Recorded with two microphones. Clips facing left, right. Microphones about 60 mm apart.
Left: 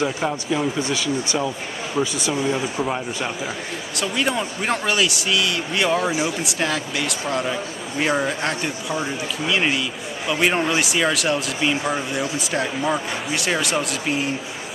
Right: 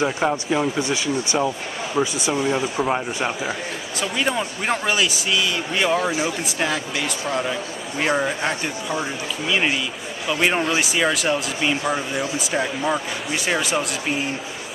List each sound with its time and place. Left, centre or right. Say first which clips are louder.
0.0 s speech: right 2 dB; centre
2.1 s speech: right 1 dB; centre
2.8 s speech: right 2 dB; centre
4.0 s speech: even; centre